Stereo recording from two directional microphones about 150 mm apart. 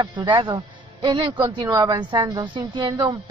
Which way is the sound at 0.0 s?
30° right (ahead or behind).